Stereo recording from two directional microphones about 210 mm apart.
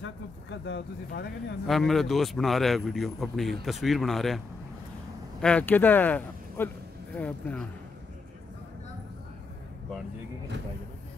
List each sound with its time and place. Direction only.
0.0 s speech: 60° left (ahead or behind)
1.7 s speech: centre (ahead or behind)
5.4 s speech: 5° left (ahead or behind)